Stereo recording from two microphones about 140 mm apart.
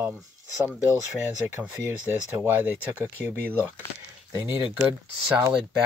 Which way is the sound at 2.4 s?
15° right (ahead or behind).